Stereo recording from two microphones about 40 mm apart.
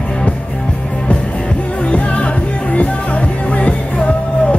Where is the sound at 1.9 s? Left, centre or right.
Left.